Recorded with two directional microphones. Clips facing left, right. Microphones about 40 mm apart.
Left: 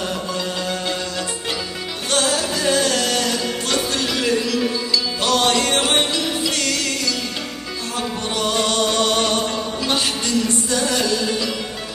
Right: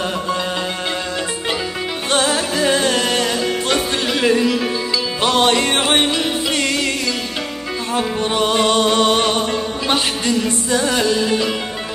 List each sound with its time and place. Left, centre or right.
2.0 s music: right
7.9 s music: right